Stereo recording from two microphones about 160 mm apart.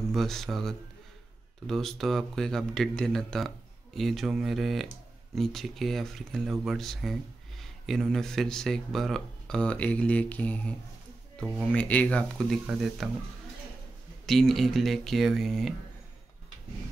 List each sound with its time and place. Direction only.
0.1 s speech: centre (ahead or behind)
14.2 s speech: centre (ahead or behind)